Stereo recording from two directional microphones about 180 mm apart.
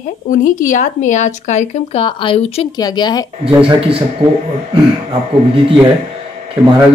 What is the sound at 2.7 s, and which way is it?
Speech, 25° left (ahead or behind).